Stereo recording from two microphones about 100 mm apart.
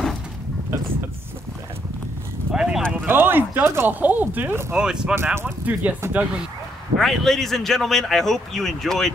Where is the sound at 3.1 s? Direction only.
20° right (ahead or behind).